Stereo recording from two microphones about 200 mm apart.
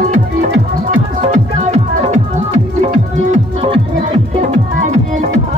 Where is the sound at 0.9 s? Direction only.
35° right (ahead or behind).